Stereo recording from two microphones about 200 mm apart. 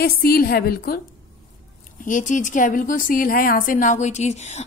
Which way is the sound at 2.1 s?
40° left (ahead or behind).